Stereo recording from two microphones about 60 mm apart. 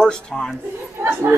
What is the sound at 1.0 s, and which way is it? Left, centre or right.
Speech, right.